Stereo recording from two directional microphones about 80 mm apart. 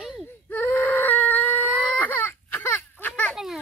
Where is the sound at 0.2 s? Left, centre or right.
Left.